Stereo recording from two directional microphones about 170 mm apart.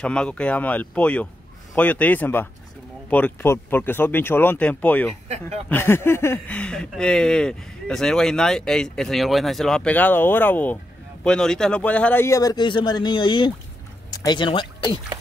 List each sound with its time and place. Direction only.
0.0 s a man's voice: 5° left (ahead or behind); by 15.0 s 30° left (ahead or behind)